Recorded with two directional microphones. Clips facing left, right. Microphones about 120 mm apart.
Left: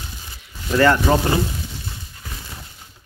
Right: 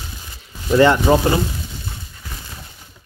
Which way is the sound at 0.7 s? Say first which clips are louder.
Right 3 dB; 20° right (ahead or behind).